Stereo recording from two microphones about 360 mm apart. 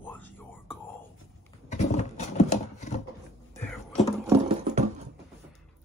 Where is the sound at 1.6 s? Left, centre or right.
Centre.